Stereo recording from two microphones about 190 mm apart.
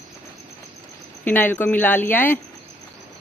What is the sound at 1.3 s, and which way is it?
Speech, 10° left (ahead or behind).